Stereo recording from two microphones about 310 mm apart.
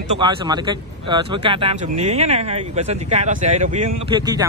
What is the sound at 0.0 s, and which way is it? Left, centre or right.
Speech, centre.